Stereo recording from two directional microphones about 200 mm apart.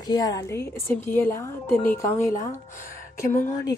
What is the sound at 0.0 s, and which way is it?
A woman's voice, 20° left (ahead or behind).